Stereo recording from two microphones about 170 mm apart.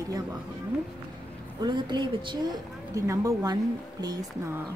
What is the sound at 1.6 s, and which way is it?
Speech, 25° right (ahead or behind).